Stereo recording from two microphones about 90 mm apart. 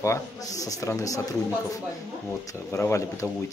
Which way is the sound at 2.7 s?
30° left (ahead or behind).